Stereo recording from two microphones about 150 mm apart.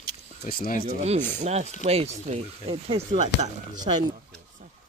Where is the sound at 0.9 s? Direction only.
55° right (ahead or behind); by 4.0 s 40° right (ahead or behind).